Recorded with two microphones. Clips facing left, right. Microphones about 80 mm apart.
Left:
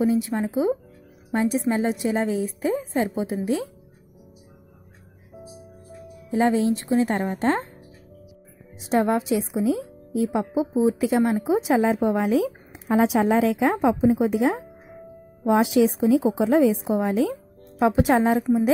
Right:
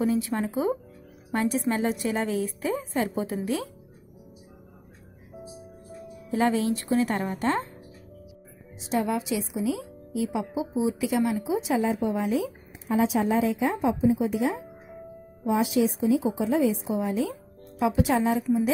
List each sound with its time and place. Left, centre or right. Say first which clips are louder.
0.0 s a woman's voice: left 3 dB; centre
6.3 s a woman's voice: left 4 dB; left
8.8 s a woman's voice: left 5 dB; left
14.0 s speech: left 3 dB; left